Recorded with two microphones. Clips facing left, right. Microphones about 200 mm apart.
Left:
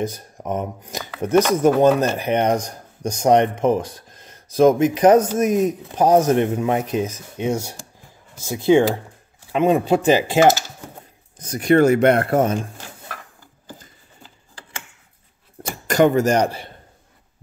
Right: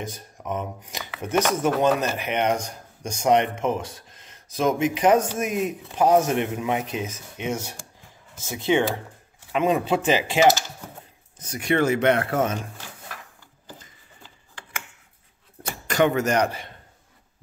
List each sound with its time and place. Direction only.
0.4 s shuffling cards: 40° left (ahead or behind)
1.2 s speech: 40° left (ahead or behind)
14.2 s a sound: 35° left (ahead or behind)
15.9 s speech: 35° left (ahead or behind)